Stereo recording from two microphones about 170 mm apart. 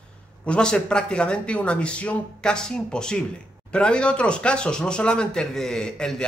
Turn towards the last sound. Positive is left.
turn(degrees=5)  # may be behind; listen again after turning